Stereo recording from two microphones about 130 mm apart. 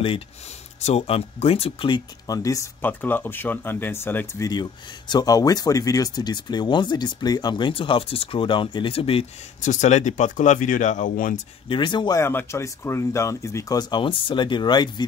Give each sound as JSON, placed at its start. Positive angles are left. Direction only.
{"t": 0.8, "sound": "speech", "side_deg": 50}
{"t": 2.9, "sound": "speech", "side_deg": 15}
{"t": 4.5, "sound": "speech", "side_deg": 35}
{"t": 9.6, "sound": "speech", "side_deg": 70}
{"t": 11.7, "sound": "speech", "side_deg": 35}
{"t": 12.2, "sound": "speech", "side_deg": 20}